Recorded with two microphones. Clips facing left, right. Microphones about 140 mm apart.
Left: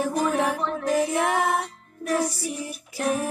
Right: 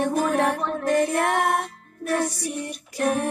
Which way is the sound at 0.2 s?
Centre (ahead or behind).